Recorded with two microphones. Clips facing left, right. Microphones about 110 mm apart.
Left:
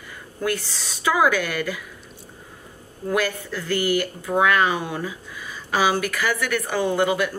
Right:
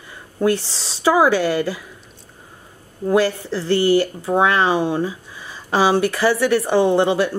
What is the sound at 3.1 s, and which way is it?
Speech, 30° right (ahead or behind).